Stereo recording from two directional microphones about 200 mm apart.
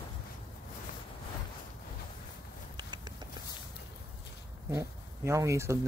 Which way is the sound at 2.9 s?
20° right (ahead or behind).